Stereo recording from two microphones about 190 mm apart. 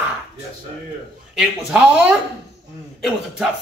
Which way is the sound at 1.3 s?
5° right (ahead or behind).